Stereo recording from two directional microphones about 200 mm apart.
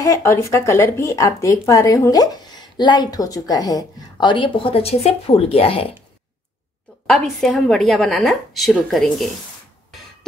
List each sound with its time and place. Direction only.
0.0 s speech: 15° left (ahead or behind)
7.3 s a woman's voice: centre (ahead or behind)